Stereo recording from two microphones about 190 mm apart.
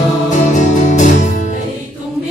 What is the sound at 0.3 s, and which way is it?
Music, 40° left (ahead or behind).